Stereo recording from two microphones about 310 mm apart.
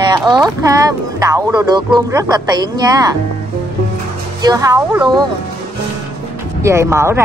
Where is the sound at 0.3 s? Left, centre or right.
Centre.